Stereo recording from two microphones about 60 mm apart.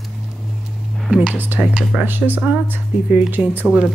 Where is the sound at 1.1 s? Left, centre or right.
Centre.